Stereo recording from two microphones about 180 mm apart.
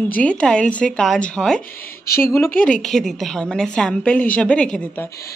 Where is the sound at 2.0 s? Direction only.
60° left (ahead or behind).